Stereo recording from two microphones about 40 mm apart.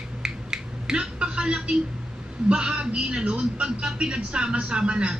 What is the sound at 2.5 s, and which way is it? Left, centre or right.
Speech, right.